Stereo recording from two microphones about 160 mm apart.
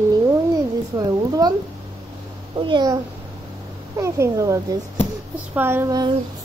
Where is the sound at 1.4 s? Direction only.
25° right (ahead or behind).